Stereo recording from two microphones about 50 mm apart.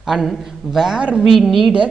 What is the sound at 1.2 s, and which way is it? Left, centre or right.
Speech, centre.